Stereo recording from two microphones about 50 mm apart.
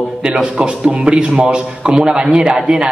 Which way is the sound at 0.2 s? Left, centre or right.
Centre.